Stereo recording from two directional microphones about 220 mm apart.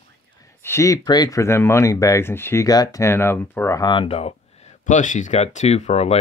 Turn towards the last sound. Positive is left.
turn(degrees=30)  # may be behind; listen again after turning